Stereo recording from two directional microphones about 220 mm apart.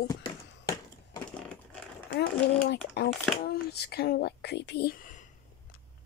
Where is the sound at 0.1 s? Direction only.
15° left (ahead or behind).